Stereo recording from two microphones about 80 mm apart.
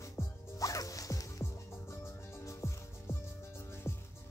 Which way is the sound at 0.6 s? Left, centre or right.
Left.